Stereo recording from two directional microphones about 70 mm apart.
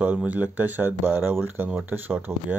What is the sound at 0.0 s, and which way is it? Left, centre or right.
Speech, centre.